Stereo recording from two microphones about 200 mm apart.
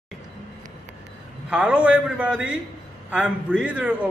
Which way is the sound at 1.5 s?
5° right (ahead or behind).